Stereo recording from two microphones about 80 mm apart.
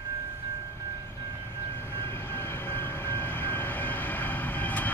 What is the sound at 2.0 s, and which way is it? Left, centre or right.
Vehicle, left.